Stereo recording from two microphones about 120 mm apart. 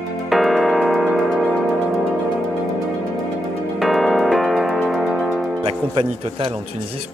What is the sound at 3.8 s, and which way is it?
Music, centre (ahead or behind).